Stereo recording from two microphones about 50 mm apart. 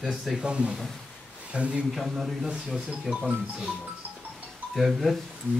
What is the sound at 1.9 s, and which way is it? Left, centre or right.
A man's voice, centre.